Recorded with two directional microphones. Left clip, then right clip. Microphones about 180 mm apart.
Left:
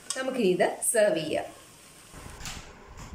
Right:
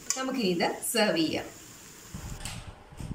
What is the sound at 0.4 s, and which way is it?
Speech, 40° left (ahead or behind).